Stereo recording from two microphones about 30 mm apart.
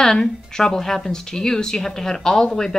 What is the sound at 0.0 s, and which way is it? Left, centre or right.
Speech, centre.